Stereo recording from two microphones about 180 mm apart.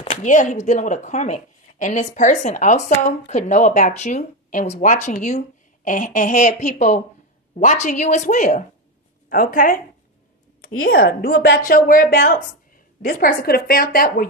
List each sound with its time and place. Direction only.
0.0 s speech: 35° left (ahead or behind)
10.8 s a woman's voice: 65° left (ahead or behind)